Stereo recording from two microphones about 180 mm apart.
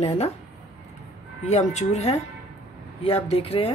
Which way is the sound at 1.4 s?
40° left (ahead or behind).